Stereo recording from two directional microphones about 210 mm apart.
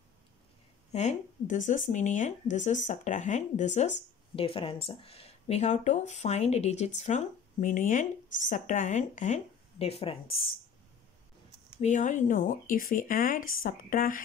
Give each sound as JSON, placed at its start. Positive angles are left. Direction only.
{"t": 0.9, "sound": "speech", "side_deg": 35}
{"t": 11.8, "sound": "speech", "side_deg": 35}